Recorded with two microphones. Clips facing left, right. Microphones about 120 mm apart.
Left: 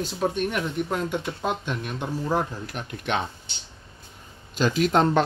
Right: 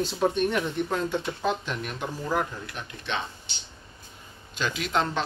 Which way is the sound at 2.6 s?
45° left (ahead or behind).